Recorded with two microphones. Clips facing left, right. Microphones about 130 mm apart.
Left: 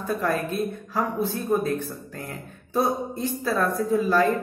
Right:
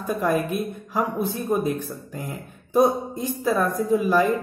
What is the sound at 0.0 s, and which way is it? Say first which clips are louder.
A woman's voice: right 2 dB; 15° right (ahead or behind).